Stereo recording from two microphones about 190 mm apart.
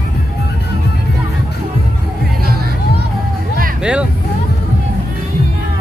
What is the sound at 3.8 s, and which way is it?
Speech, 5° right (ahead or behind).